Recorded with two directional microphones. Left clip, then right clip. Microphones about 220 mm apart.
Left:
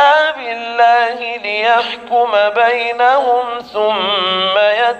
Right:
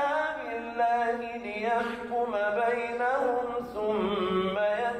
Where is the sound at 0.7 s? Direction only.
40° left (ahead or behind).